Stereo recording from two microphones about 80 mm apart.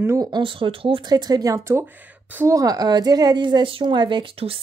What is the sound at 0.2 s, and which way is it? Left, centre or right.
A woman's voice, right.